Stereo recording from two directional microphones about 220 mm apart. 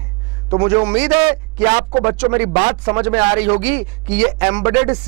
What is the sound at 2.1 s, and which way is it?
Speech, 10° right (ahead or behind).